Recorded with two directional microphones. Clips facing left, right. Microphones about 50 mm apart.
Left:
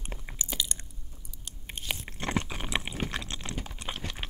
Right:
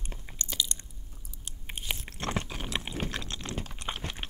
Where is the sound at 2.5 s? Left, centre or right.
Centre.